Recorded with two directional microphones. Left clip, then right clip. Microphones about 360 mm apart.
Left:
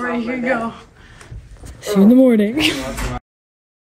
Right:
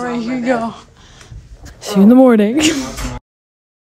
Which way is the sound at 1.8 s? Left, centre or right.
Centre.